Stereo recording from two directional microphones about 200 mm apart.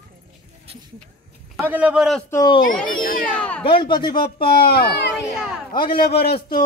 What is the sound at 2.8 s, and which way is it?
Speech, 45° left (ahead or behind).